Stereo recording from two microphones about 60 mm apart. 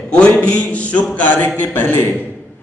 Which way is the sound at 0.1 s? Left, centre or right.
Centre.